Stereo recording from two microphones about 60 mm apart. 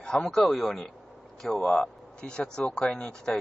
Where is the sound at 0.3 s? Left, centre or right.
Centre.